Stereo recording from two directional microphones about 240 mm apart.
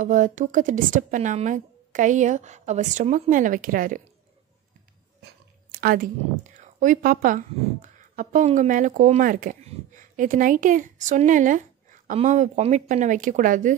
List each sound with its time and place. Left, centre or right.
0.0 s speech: right
5.2 s speech: right